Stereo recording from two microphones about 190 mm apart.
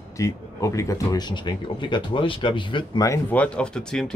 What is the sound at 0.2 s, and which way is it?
Speech, 15° left (ahead or behind).